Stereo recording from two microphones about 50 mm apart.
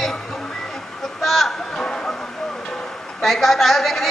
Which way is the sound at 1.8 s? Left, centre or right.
Centre.